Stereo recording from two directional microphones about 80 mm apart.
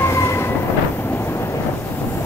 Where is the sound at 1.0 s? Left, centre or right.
Left.